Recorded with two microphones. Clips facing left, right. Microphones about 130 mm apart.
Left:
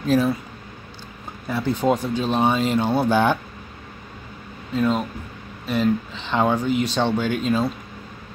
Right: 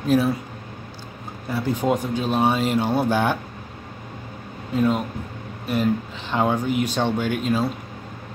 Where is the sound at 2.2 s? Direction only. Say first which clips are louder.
Left 1 dB; 5° right (ahead or behind).